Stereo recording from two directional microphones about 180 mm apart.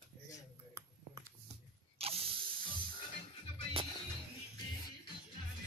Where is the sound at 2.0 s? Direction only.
35° right (ahead or behind).